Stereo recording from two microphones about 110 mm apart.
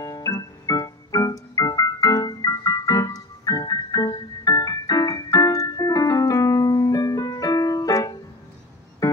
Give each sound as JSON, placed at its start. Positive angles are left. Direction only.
{"t": 0.0, "sound": "keyboard", "side_deg": 30}